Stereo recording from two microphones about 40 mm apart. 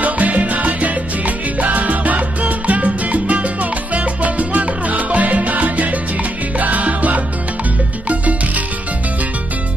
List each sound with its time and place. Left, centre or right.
0.0 s salsa music: right
8.1 s music: right